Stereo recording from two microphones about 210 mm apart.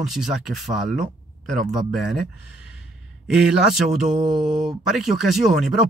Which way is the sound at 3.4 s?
Centre (ahead or behind).